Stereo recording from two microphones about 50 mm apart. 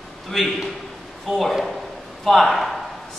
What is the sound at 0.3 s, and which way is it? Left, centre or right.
Speech, centre.